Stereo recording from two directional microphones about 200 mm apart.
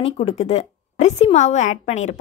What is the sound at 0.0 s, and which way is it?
Speech, 30° left (ahead or behind).